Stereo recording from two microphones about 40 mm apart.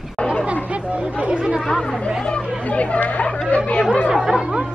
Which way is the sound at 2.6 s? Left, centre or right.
Left.